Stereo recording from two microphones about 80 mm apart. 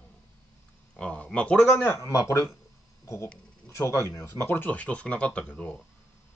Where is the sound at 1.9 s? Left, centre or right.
Left.